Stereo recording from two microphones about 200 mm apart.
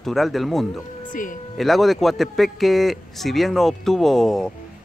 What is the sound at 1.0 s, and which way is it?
Speech, 40° left (ahead or behind).